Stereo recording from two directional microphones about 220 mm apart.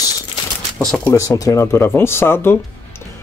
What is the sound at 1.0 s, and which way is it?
Speech, 15° left (ahead or behind).